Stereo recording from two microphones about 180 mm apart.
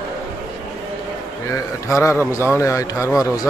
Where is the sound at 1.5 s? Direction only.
15° left (ahead or behind).